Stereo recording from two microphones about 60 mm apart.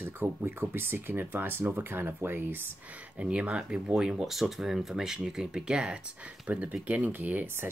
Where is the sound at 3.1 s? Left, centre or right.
Centre.